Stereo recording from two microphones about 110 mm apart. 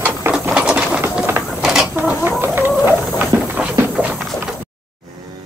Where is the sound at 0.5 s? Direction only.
10° right (ahead or behind).